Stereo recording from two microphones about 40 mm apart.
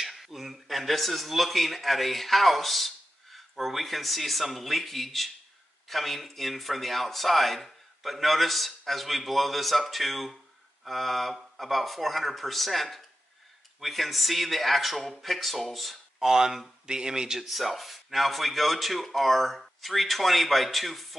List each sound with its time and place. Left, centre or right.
0.1 s speech: centre
16.2 s speech: centre
17.4 s speech: centre